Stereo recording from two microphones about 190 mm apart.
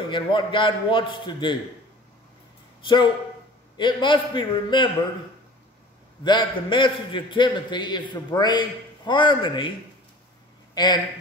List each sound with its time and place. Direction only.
0.1 s a man's voice: 25° left (ahead or behind)
2.8 s a man's voice: 25° left (ahead or behind)
6.2 s a man's voice: 25° left (ahead or behind)
10.7 s a sound: 20° left (ahead or behind)